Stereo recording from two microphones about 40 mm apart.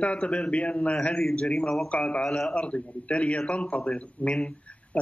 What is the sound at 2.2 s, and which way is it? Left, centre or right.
Speech, centre.